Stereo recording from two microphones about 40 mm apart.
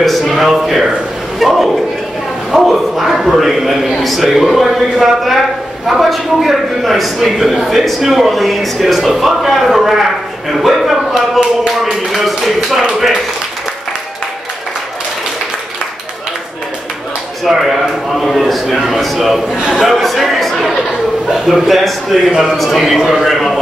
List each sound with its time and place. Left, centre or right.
0.0 s speech: centre
0.4 s speech: centre
11.1 s speech: centre
12.1 s speech: centre
12.4 s a sound: centre
17.5 s speech: centre
19.1 s a sound: centre
19.7 s speech: centre
22.3 s a sound: centre
22.6 s speech: centre